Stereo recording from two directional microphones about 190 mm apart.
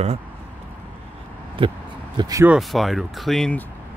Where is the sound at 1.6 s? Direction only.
25° right (ahead or behind).